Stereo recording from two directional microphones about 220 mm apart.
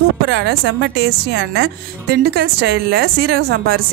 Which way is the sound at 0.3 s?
50° right (ahead or behind).